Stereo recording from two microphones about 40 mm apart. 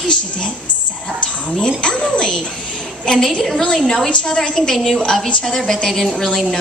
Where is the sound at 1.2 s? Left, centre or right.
Left; by 4.1 s centre.